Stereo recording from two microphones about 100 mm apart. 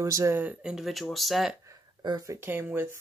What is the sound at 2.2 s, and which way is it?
Speech, 20° right (ahead or behind).